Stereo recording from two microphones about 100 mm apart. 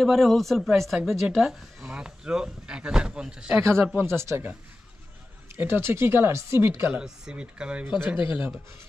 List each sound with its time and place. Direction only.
0.0 s a woman's voice: centre (ahead or behind)
3.6 s speech: 25° right (ahead or behind)
5.6 s speech: 25° right (ahead or behind)
7.0 s speech: 10° right (ahead or behind)